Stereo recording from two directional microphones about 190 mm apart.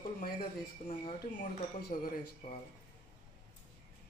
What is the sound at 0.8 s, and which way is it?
Speech, 35° left (ahead or behind).